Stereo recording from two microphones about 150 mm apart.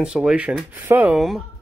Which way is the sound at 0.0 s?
5° right (ahead or behind).